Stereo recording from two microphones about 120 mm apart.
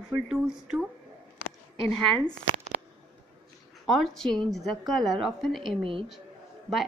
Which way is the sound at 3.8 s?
Centre (ahead or behind).